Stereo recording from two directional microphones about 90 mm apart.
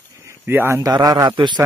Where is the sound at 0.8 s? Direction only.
45° right (ahead or behind).